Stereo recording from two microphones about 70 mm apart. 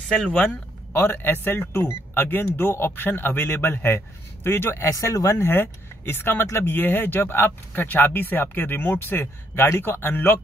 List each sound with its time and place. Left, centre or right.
0.3 s speech: left
4.8 s speech: left
5.4 s speech: left